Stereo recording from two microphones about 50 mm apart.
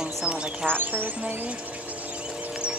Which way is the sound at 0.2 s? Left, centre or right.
Right.